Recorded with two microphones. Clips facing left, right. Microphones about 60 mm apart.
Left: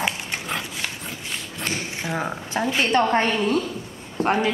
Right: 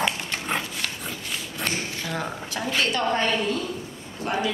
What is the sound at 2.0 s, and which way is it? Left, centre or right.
Speech, left.